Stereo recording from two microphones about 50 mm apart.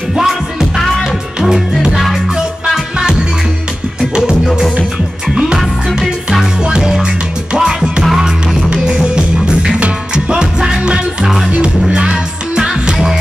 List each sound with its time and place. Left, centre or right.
0.2 s music: centre
0.7 s music: centre
6.6 s music: centre
11.9 s music: centre